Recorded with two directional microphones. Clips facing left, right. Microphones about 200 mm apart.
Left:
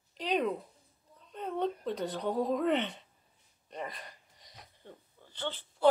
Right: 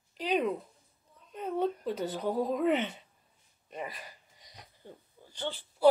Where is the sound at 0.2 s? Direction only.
5° right (ahead or behind).